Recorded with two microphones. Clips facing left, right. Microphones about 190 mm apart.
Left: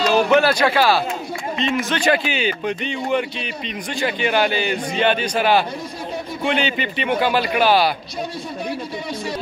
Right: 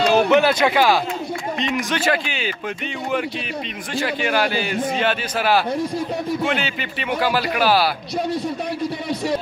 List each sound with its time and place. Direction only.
0.3 s speech: 20° right (ahead or behind)
2.0 s a man's voice: centre (ahead or behind)
4.0 s a man's voice: centre (ahead or behind)